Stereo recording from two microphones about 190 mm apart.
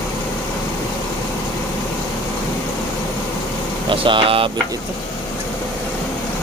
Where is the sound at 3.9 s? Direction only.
25° right (ahead or behind).